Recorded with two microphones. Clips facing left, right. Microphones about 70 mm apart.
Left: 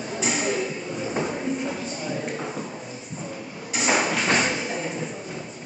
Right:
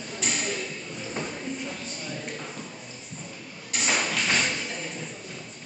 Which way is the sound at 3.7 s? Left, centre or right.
Centre.